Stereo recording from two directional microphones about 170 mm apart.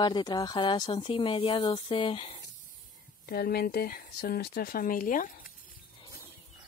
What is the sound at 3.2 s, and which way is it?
Speech, 65° left (ahead or behind).